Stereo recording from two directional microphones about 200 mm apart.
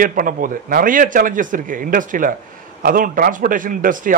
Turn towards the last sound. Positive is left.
turn(degrees=-40)  # may be behind; listen again after turning